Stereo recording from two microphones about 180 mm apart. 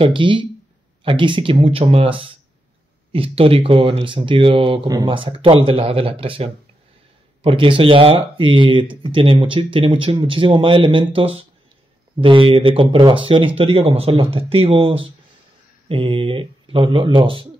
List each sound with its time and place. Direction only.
0.0 s speech: 25° right (ahead or behind)